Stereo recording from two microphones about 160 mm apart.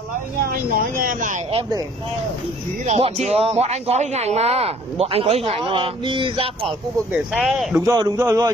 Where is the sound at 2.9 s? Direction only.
45° right (ahead or behind).